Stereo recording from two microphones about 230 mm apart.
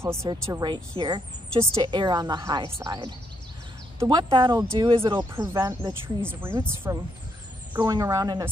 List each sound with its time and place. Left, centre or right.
0.0 s speech: centre